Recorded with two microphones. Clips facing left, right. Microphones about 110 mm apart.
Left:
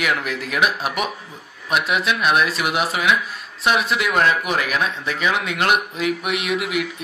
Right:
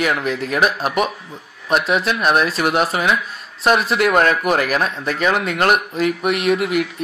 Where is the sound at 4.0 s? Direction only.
45° right (ahead or behind).